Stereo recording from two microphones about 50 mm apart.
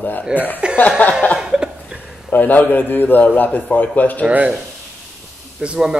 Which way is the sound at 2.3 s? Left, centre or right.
Left.